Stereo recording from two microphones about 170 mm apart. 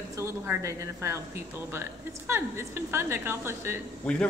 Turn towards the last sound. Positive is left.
turn(degrees=5)  # may be behind; listen again after turning